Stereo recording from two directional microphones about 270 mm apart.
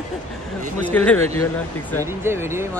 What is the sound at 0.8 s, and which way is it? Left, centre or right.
Speech, centre.